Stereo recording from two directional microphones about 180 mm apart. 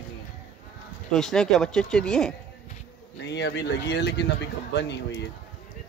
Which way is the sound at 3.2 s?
75° left (ahead or behind).